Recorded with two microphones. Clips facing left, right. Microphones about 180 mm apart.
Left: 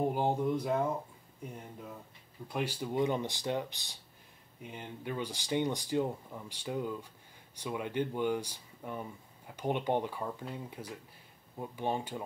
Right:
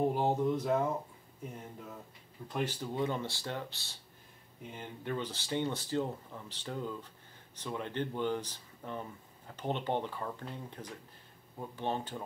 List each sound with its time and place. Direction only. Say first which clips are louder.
0.1 s speech: even; 5° left (ahead or behind)
2.4 s speech: even; 10° left (ahead or behind)